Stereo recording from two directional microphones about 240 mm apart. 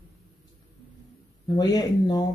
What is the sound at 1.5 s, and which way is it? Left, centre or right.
Speech, centre.